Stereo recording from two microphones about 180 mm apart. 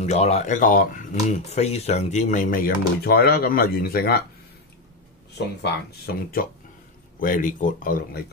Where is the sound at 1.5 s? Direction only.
35° left (ahead or behind); by 4.2 s 55° left (ahead or behind).